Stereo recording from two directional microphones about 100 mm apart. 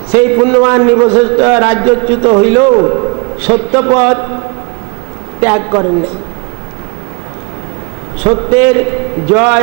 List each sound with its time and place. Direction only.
0.1 s a man's voice: 20° right (ahead or behind)
5.4 s a man's voice: 25° right (ahead or behind)
8.3 s a man's voice: 20° right (ahead or behind)